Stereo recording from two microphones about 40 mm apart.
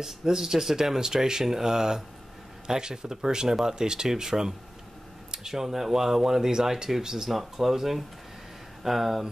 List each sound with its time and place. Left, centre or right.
0.0 s speech: centre